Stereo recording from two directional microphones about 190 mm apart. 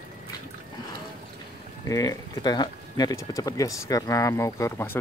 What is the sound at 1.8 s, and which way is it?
Speech, 20° left (ahead or behind).